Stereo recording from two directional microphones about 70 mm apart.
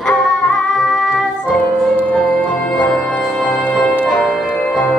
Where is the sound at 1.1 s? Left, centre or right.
Left.